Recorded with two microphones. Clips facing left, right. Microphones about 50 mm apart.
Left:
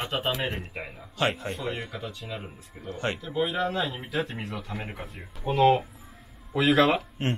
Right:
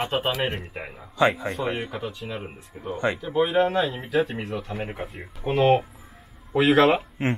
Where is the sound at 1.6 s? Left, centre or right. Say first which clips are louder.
Right 5 dB; right.